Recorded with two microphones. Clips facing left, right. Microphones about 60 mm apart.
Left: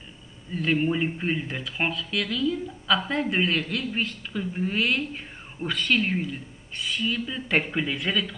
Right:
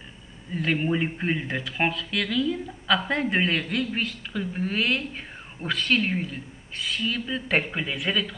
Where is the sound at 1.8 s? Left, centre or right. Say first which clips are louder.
Right 1 dB; right.